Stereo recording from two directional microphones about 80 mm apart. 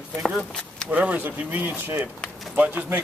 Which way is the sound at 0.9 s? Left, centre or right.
Centre.